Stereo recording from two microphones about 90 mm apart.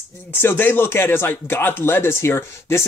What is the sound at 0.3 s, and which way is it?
Speech, 25° left (ahead or behind).